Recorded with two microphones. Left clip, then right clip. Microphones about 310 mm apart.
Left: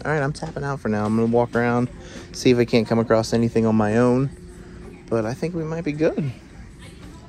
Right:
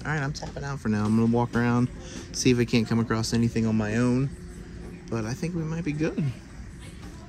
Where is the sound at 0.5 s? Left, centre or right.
Left.